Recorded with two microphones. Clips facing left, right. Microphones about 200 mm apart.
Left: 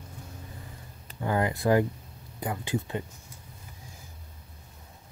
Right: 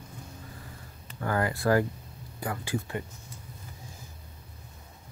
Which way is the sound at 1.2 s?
20° left (ahead or behind).